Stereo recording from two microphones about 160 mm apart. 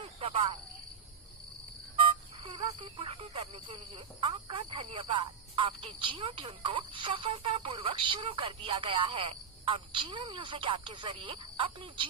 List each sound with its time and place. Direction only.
0.2 s speech: 35° right (ahead or behind)
2.0 s speech: 35° right (ahead or behind)